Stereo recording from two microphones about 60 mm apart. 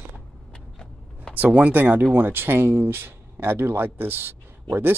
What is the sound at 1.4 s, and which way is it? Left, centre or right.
Speech, right.